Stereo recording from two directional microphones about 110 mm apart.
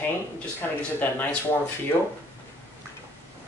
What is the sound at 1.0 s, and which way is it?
Speech, 15° left (ahead or behind).